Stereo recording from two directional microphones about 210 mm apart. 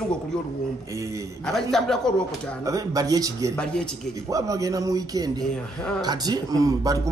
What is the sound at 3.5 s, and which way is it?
Speech, 5° left (ahead or behind).